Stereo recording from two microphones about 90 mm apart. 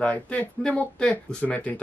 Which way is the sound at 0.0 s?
15° left (ahead or behind).